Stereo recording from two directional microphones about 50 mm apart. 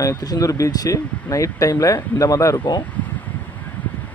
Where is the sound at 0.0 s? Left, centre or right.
Left.